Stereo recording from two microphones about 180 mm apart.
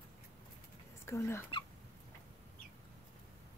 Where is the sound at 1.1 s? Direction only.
15° left (ahead or behind).